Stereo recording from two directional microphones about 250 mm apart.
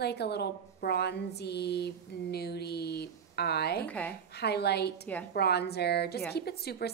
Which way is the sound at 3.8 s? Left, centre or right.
Centre.